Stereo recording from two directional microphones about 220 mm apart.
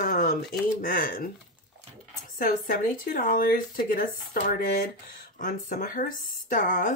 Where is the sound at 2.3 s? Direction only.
40° left (ahead or behind).